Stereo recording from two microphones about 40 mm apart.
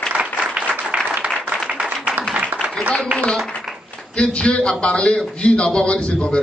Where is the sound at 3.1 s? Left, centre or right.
Right.